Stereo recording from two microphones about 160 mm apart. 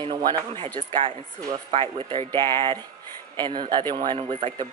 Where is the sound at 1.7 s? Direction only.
35° right (ahead or behind).